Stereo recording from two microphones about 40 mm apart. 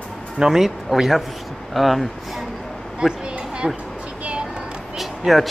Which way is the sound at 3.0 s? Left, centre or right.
Right.